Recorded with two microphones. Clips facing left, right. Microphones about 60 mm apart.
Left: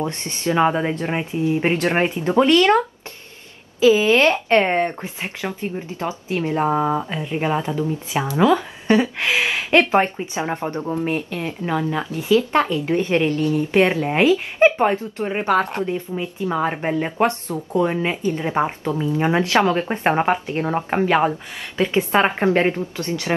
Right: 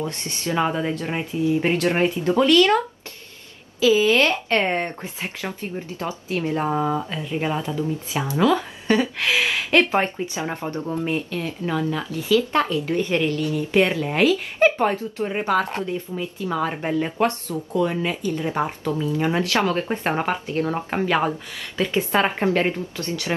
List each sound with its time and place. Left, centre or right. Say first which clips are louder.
0.0 s speech: left 4 dB; left
3.8 s speech: left 3 dB; left